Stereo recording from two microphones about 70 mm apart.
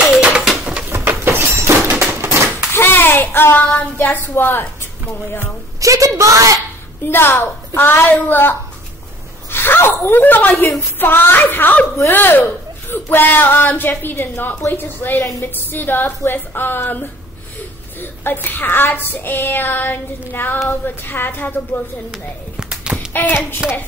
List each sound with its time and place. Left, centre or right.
0.0 s a sound: centre
0.8 s a sound: right
2.7 s child singing: left
5.8 s a woman's voice: right
7.1 s a woman's voice: left
9.5 s child singing: left
18.2 s child singing: left
22.1 s a sound: centre
22.9 s hands: left
23.6 s music: centre